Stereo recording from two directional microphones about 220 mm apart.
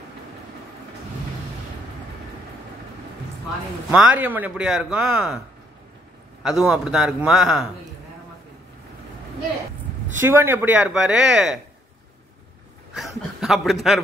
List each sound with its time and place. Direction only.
3.9 s a man's voice: 5° right (ahead or behind)
6.4 s a man's voice: 5° right (ahead or behind)
10.2 s a man's voice: 10° right (ahead or behind)
12.9 s speech: centre (ahead or behind)